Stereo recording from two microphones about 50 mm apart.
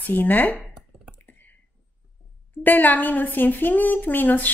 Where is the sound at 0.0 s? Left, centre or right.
Left.